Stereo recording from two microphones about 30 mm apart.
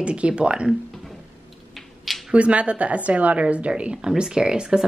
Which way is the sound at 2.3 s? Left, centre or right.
Right.